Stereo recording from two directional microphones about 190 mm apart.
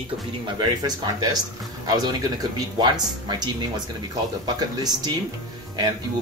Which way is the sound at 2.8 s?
20° right (ahead or behind).